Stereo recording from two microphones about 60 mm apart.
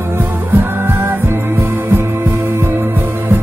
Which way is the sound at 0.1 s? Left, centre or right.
Right.